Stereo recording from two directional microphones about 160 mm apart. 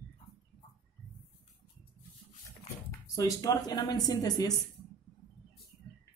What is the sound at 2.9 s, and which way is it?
Speech, 20° left (ahead or behind).